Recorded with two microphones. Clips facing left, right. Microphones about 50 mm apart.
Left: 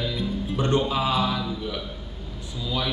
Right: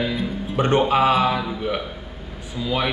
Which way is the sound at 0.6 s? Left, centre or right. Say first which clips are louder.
Right 5 dB; right.